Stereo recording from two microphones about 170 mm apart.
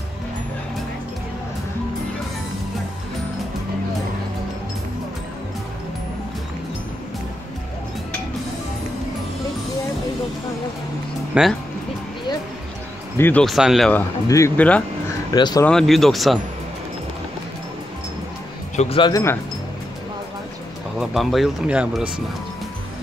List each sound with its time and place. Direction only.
11.3 s speech: 5° right (ahead or behind)
13.2 s speech: 5° left (ahead or behind)
14.2 s speech: 20° left (ahead or behind)
14.6 s a sound: 10° left (ahead or behind)
15.3 s speech: 25° left (ahead or behind)
15.6 s speech: centre (ahead or behind)
18.8 s speech: 30° left (ahead or behind)
21.0 s speech: centre (ahead or behind)